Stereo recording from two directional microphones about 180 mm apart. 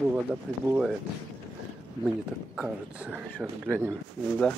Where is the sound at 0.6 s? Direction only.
10° right (ahead or behind).